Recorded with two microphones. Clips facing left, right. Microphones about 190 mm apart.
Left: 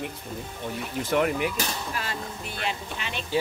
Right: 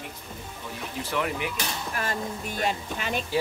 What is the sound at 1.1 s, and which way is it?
Speech, 45° left (ahead or behind).